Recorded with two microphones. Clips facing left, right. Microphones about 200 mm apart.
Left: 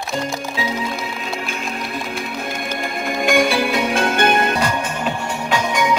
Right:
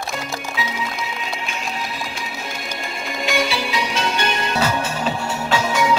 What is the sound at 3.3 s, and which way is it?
Music, 50° left (ahead or behind).